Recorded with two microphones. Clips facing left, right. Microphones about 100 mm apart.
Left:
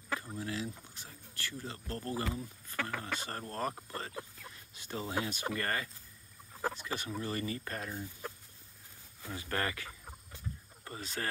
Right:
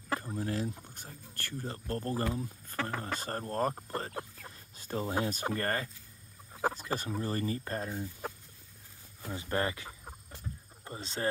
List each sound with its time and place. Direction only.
0.1 s a sound: 45° right (ahead or behind)
0.9 s speech: 50° right (ahead or behind)
4.1 s speech: 55° right (ahead or behind)
4.5 s speech: 40° right (ahead or behind)
9.3 s speech: 25° right (ahead or behind)